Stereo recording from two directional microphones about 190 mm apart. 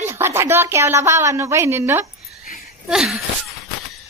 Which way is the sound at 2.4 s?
45° left (ahead or behind).